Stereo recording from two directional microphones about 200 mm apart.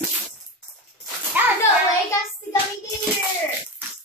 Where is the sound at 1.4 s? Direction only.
10° right (ahead or behind).